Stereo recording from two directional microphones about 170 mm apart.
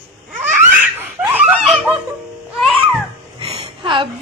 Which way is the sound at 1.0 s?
10° right (ahead or behind).